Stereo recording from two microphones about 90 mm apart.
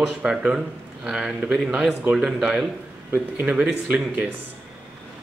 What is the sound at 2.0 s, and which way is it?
Speech, 10° right (ahead or behind).